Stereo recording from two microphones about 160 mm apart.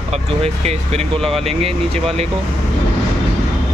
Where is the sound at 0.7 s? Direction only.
40° right (ahead or behind).